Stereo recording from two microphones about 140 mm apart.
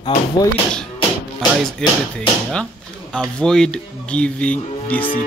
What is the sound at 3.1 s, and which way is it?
Speech, 5° left (ahead or behind).